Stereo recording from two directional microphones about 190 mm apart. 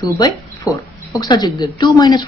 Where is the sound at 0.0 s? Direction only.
20° left (ahead or behind).